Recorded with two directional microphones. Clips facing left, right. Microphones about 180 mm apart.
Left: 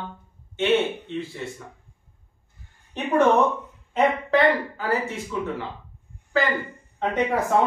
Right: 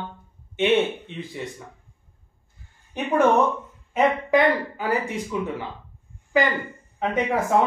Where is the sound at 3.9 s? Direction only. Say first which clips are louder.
Right 1 dB; 15° right (ahead or behind).